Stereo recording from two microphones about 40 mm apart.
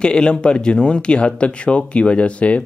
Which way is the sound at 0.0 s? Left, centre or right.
Left.